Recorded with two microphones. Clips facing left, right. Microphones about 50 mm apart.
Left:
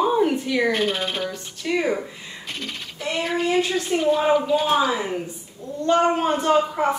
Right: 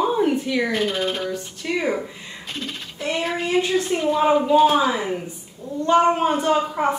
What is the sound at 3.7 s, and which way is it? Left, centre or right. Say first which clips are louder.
Speech: right 4 dB; centre.